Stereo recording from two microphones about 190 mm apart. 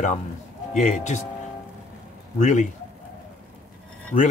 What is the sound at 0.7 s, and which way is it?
Speech, 40° left (ahead or behind).